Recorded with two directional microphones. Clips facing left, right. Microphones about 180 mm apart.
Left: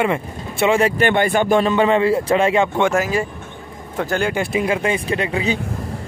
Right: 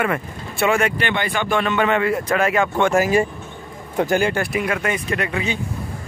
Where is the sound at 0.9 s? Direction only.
45° left (ahead or behind); by 2.7 s 25° left (ahead or behind).